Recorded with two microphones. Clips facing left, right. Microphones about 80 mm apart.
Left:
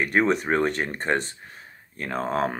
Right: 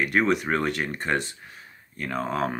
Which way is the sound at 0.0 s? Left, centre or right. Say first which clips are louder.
Left 1 dB; left.